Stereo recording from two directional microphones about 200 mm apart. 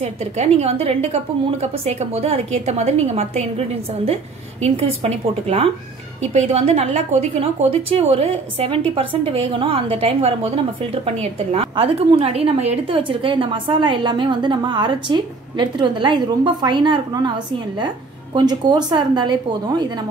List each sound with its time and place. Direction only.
0.0 s a woman's voice: 35° right (ahead or behind)
18.3 s a woman's voice: 20° right (ahead or behind)